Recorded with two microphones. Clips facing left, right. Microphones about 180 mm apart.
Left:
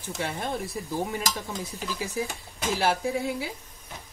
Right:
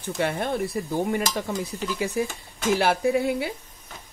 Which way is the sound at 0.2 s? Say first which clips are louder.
Right 6 dB; 60° right (ahead or behind).